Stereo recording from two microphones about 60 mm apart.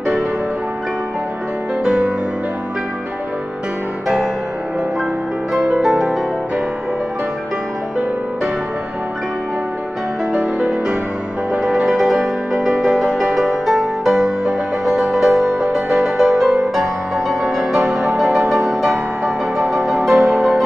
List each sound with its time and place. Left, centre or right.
1.9 s music: centre
5.5 s music: centre
10.3 s music: centre